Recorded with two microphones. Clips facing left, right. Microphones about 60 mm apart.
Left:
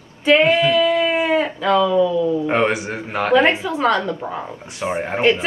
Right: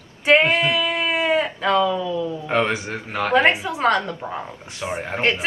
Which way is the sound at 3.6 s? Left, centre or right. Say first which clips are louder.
Left 3 dB; right.